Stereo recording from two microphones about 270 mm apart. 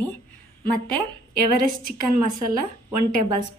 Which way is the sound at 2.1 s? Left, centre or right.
Right.